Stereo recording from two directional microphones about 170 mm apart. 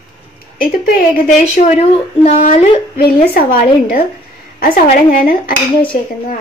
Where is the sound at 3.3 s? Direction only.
55° left (ahead or behind).